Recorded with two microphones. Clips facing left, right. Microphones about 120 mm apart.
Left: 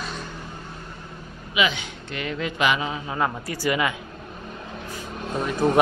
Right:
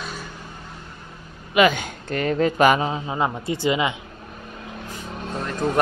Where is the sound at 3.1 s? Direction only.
20° right (ahead or behind).